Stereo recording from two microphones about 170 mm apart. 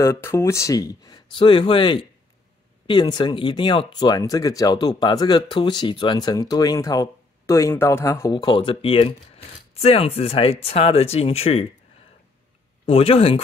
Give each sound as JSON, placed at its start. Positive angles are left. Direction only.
{"t": 0.0, "sound": "speech", "side_deg": 15}
{"t": 12.8, "sound": "speech", "side_deg": 35}